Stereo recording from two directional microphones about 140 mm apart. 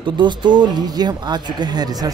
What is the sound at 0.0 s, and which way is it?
Speech, 35° right (ahead or behind).